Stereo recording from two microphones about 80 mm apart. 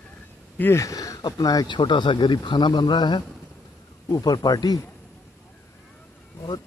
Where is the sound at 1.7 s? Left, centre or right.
Left.